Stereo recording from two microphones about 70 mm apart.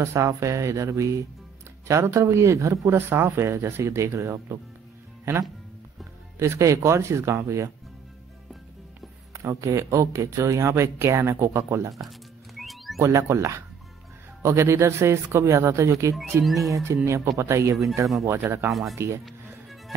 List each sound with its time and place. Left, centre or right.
0.0 s speech: right
6.4 s speech: right
9.3 s speech: right
12.5 s music: centre
13.0 s speech: right
16.4 s speech: centre
16.8 s speech: right
18.7 s speech: centre